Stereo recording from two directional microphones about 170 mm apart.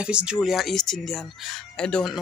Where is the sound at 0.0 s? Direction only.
5° right (ahead or behind).